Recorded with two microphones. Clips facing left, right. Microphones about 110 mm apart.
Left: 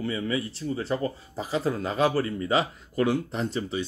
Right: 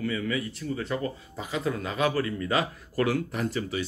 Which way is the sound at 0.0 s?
30° left (ahead or behind).